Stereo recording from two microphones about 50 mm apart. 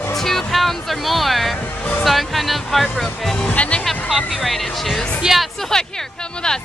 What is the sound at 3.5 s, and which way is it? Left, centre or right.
Speech, left.